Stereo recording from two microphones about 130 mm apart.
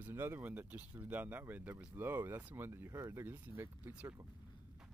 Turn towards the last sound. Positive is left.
turn(degrees=-15)  # may be behind; listen again after turning